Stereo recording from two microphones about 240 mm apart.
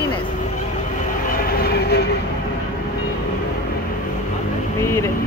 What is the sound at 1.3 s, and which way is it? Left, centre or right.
Train, left.